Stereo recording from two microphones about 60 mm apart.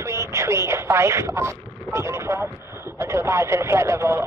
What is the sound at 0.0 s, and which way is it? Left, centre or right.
Speech, right.